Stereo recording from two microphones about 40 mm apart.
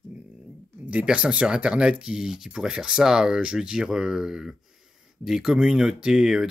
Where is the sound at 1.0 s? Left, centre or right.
Right.